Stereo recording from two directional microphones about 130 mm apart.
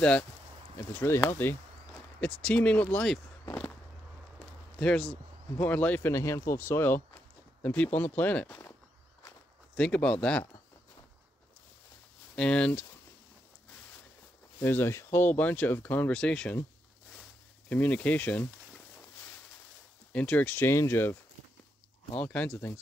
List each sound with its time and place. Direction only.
0.7 s speech: 20° left (ahead or behind)
4.7 s speech: 5° left (ahead or behind)
9.8 s speech: 10° left (ahead or behind)
12.4 s speech: 5° left (ahead or behind)
14.6 s speech: 15° left (ahead or behind)
17.1 s a sound: 10° left (ahead or behind)
20.1 s speech: 10° left (ahead or behind)
22.2 s speech: 10° left (ahead or behind)